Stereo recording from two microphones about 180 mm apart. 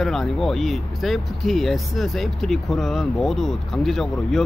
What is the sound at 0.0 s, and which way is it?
Speech, centre (ahead or behind).